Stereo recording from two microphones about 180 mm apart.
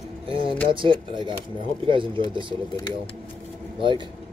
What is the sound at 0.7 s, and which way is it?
Speech, 30° right (ahead or behind).